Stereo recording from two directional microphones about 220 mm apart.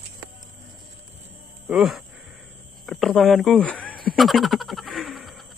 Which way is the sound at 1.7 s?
Centre (ahead or behind).